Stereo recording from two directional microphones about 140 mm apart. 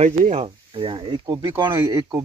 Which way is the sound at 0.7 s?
35° right (ahead or behind).